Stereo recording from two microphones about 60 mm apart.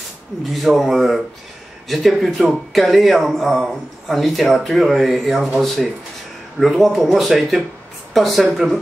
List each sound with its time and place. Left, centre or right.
0.5 s speech: centre
6.6 s speech: centre